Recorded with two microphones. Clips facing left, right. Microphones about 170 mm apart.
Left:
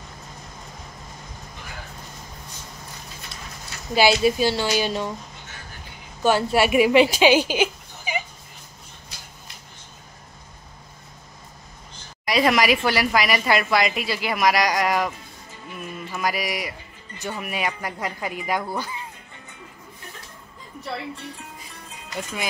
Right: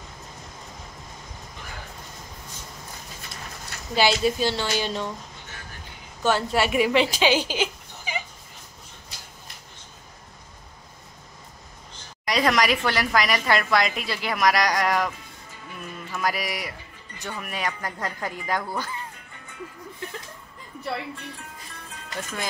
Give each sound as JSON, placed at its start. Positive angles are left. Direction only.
{"t": 3.9, "sound": "speech", "side_deg": 10}
{"t": 6.2, "sound": "speech", "side_deg": 10}
{"t": 12.3, "sound": "a woman's voice", "side_deg": 5}
{"t": 16.2, "sound": "a woman's voice", "side_deg": 0}
{"t": 17.2, "sound": "speech", "side_deg": 20}
{"t": 17.5, "sound": "speech", "side_deg": 10}
{"t": 22.1, "sound": "speech", "side_deg": 15}